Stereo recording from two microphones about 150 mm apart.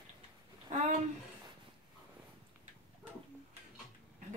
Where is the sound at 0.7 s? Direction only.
55° right (ahead or behind).